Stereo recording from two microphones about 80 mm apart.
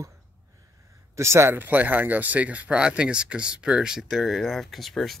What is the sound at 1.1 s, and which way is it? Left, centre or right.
Speech, right.